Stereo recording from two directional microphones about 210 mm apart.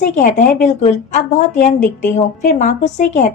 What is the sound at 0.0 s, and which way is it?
A woman's voice, 40° left (ahead or behind).